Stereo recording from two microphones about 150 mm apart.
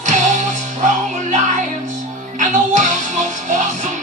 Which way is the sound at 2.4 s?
55° right (ahead or behind).